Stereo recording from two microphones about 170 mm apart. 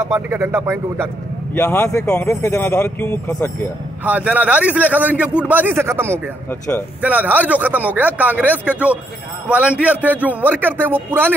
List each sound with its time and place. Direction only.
0.0 s a man's voice: 15° right (ahead or behind)
1.5 s speech: 15° left (ahead or behind)
4.0 s a man's voice: 10° right (ahead or behind)